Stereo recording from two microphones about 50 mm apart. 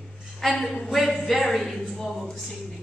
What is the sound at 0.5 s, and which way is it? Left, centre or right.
Speech, centre.